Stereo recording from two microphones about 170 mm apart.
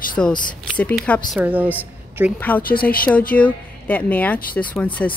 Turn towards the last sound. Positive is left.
turn(degrees=10)  # may be behind; listen again after turning